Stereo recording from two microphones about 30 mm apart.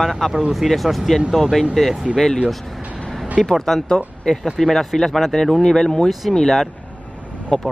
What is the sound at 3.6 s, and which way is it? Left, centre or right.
Speech, centre.